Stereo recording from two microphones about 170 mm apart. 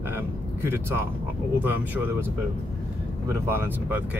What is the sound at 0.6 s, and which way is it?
Speech, 15° right (ahead or behind).